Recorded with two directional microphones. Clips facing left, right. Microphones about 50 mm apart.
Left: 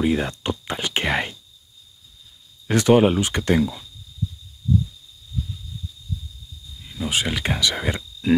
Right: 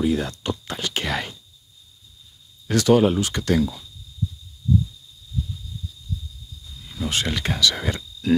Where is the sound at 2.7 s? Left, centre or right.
Left.